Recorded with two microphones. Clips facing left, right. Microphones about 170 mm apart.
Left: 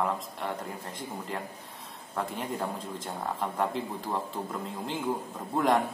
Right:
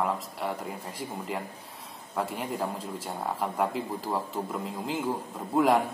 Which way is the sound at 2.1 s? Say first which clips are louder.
Right 2 dB; 5° right (ahead or behind).